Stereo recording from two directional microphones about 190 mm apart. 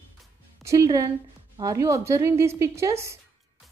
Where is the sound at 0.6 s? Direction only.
15° right (ahead or behind).